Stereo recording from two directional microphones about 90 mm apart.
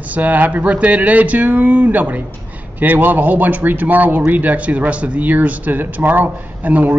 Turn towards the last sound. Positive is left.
turn(degrees=-20)  # may be behind; listen again after turning